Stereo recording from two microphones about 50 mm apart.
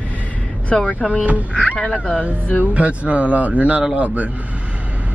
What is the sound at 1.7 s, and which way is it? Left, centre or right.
Speech, left.